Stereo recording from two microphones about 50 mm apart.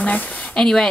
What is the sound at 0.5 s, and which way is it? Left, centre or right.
Speech, centre.